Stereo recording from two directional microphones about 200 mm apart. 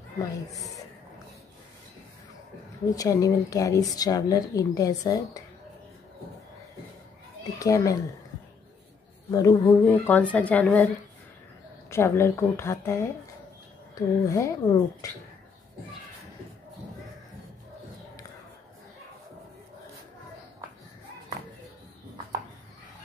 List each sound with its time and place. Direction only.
3.0 s speech: 15° left (ahead or behind)
7.5 s speech: 15° left (ahead or behind)
9.3 s speech: 15° left (ahead or behind)
11.9 s speech: 15° left (ahead or behind)